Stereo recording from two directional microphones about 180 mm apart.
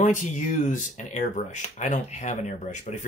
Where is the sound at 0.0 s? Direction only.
45° left (ahead or behind).